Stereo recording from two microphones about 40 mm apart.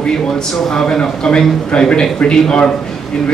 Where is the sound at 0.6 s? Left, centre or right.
Centre.